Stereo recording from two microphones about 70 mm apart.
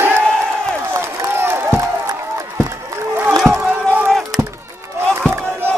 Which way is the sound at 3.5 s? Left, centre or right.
Right.